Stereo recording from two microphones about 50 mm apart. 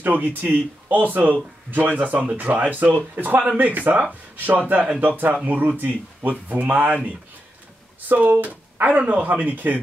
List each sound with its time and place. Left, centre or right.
0.0 s speech: right
8.1 s speech: right